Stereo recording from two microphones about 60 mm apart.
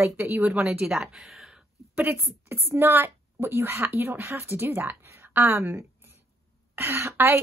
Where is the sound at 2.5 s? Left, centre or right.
Right.